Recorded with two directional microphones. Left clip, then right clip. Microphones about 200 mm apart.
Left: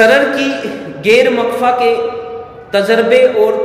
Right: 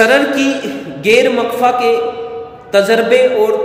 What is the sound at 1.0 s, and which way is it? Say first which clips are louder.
A man's voice: left 1 dB; 25° right (ahead or behind).